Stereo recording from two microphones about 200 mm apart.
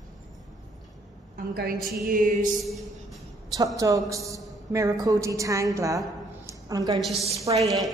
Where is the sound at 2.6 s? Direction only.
Centre (ahead or behind).